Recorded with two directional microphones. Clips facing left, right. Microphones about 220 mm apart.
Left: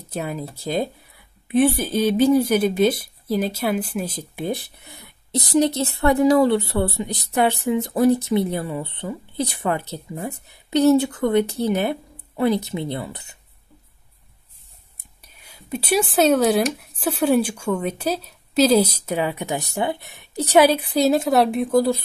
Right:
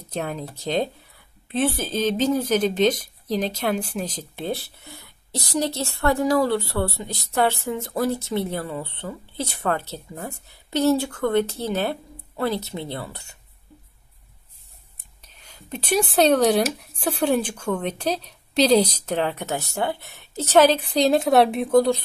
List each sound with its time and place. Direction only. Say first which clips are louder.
0.1 s a woman's voice: left 1 dB; 5° left (ahead or behind)
15.2 s a woman's voice: left 1 dB; 10° left (ahead or behind)